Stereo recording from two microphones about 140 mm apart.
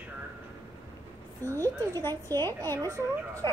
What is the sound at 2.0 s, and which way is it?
Speech, 15° left (ahead or behind).